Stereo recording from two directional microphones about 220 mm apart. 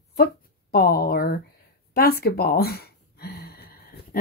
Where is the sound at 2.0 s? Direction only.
45° left (ahead or behind).